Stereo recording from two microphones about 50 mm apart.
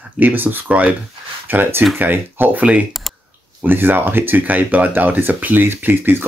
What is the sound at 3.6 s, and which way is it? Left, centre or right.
Speech, right.